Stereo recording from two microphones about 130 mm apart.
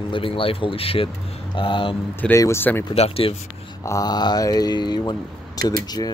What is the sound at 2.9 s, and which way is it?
Speech, 50° left (ahead or behind).